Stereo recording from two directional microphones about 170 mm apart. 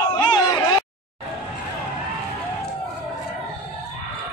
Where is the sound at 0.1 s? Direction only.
30° left (ahead or behind).